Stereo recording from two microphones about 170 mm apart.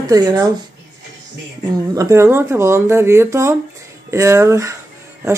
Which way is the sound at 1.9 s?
15° right (ahead or behind).